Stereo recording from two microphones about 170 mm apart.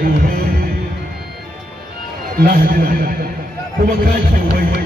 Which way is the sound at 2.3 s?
55° right (ahead or behind).